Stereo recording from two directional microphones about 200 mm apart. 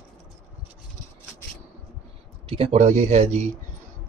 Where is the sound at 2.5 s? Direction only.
30° right (ahead or behind).